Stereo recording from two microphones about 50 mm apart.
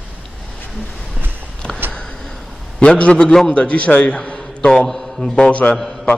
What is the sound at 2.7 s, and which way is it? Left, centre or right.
A man's voice, left.